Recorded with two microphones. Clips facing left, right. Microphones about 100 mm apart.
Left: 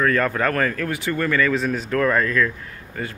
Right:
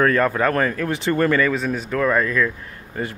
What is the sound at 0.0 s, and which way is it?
Speech, 25° right (ahead or behind).